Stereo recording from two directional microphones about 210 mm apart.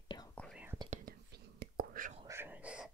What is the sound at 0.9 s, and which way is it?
Whispering, 45° right (ahead or behind).